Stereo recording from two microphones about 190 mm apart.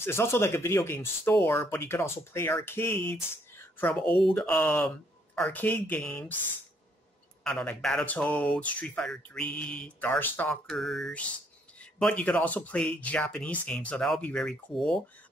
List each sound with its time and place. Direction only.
0.0 s speech: 15° left (ahead or behind)
3.5 s a sound: 10° left (ahead or behind)
4.2 s speech: 5° left (ahead or behind)
7.4 s speech: 5° left (ahead or behind)